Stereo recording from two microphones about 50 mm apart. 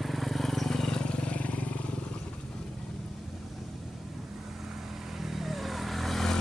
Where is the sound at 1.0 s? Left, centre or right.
Left.